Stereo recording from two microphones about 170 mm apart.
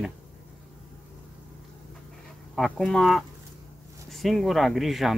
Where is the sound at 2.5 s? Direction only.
Centre (ahead or behind).